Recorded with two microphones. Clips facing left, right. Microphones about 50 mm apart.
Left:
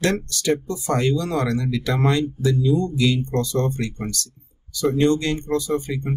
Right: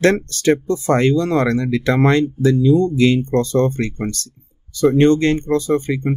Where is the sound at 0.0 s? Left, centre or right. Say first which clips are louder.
Right 7 dB; right.